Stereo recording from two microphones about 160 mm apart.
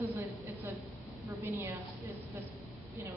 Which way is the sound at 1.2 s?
15° right (ahead or behind).